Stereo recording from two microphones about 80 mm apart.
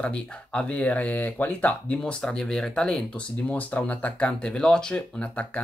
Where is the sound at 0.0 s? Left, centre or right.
Centre.